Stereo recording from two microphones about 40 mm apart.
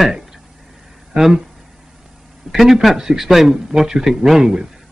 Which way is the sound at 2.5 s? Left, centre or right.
Centre.